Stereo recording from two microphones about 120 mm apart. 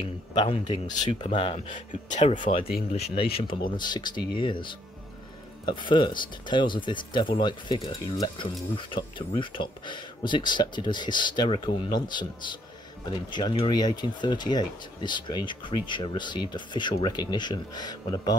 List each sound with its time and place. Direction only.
0.3 s a man's voice: 40° left (ahead or behind)
3.7 s speech: 40° left (ahead or behind)